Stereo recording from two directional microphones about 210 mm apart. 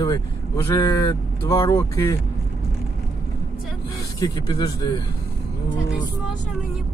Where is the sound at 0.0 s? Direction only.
15° left (ahead or behind).